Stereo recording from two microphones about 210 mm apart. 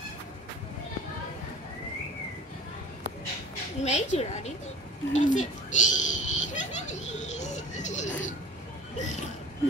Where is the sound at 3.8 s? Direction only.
35° left (ahead or behind).